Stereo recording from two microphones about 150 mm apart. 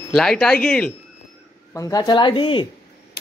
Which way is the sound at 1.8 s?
25° left (ahead or behind).